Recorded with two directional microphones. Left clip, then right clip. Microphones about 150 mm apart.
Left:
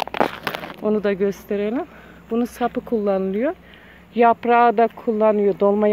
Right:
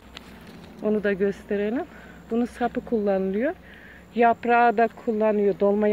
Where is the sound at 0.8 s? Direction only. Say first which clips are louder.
Left 2 dB; 25° left (ahead or behind).